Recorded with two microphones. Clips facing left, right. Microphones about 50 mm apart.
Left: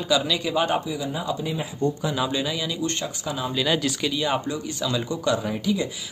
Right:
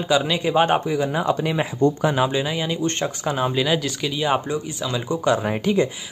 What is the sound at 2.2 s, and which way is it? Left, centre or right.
Speech, right.